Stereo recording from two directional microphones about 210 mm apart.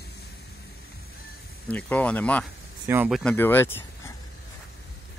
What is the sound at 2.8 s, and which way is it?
Speech, 5° right (ahead or behind).